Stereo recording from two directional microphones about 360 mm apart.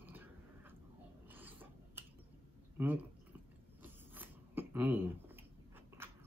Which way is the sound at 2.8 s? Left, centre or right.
Centre.